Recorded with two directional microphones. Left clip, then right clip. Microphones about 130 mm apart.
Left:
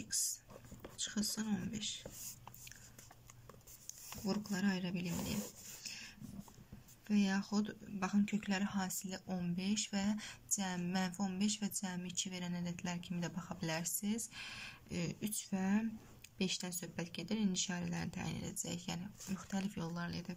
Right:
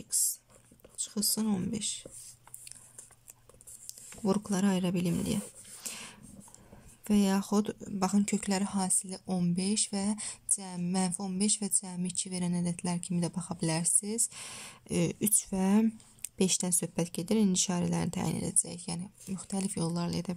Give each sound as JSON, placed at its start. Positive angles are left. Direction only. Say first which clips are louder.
{"t": 0.1, "sound": "whispering", "louder": "right 5 dB", "side_deg": -50}
{"t": 0.9, "sound": "speech", "louder": "right 7 dB", "side_deg": -50}
{"t": 4.3, "sound": "speech", "louder": "right 9 dB", "side_deg": -55}